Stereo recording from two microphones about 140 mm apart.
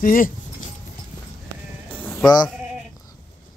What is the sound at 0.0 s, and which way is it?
Speech, 75° left (ahead or behind).